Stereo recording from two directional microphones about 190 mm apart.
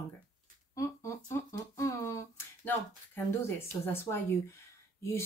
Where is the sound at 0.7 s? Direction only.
15° left (ahead or behind).